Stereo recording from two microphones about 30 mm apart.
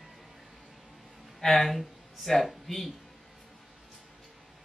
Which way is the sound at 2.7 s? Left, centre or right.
Centre.